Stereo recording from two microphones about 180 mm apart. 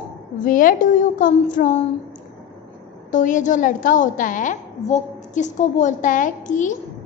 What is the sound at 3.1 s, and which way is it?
A woman's voice, 45° left (ahead or behind).